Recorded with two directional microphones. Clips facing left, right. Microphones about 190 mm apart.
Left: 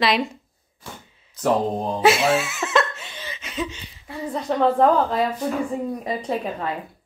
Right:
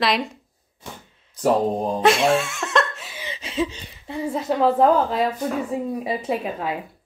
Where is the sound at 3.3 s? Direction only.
25° right (ahead or behind).